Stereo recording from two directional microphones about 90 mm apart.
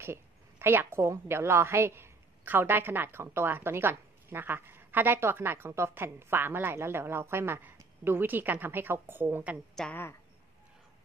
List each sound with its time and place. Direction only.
0.0 s a woman's voice: 30° right (ahead or behind)
9.8 s a woman's voice: 5° left (ahead or behind)